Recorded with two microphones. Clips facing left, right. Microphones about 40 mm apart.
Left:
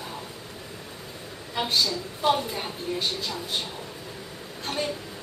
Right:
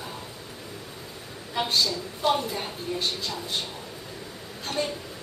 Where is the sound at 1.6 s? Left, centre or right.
Centre.